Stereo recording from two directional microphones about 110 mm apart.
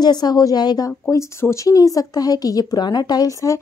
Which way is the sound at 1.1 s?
25° left (ahead or behind).